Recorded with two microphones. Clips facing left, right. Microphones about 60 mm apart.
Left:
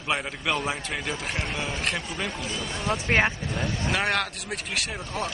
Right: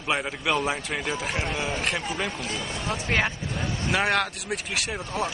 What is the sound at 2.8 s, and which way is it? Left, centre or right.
Speech, left.